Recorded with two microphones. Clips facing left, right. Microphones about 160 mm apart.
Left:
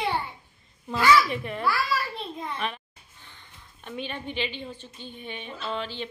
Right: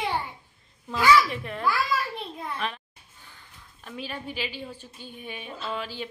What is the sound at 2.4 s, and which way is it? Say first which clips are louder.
A woman's voice: left 1 dB; centre (ahead or behind).